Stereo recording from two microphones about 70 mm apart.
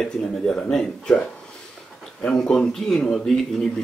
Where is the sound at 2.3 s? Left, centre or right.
Centre.